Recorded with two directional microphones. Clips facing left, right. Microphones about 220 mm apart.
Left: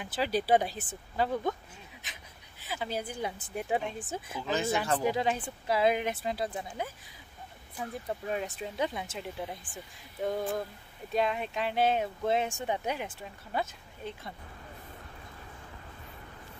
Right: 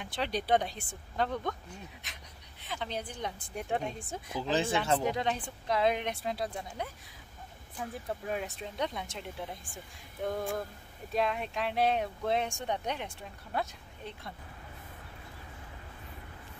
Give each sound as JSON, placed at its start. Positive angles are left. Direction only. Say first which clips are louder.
{"t": 0.0, "sound": "speech", "louder": "left 4 dB", "side_deg": 5}
{"t": 4.4, "sound": "speech", "louder": "right 1 dB", "side_deg": -30}
{"t": 5.0, "sound": "speech", "louder": "left 2 dB", "side_deg": 5}
{"t": 7.7, "sound": "speech", "louder": "left 1 dB", "side_deg": 5}